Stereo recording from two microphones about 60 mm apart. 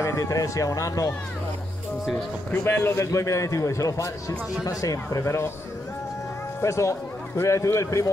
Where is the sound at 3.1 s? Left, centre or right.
Left.